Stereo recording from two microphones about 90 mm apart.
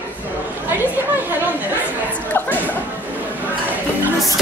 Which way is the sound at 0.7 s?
20° right (ahead or behind).